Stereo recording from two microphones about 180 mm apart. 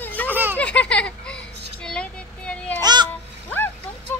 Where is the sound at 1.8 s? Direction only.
5° left (ahead or behind).